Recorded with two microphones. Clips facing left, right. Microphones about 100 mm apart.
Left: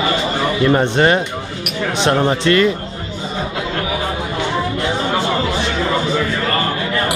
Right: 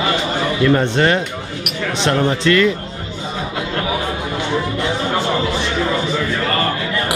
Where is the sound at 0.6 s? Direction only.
20° left (ahead or behind).